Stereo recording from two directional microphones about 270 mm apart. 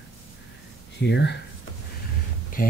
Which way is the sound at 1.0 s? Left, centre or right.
Left.